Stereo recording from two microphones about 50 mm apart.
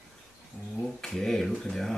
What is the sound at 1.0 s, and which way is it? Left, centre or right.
Speech, centre.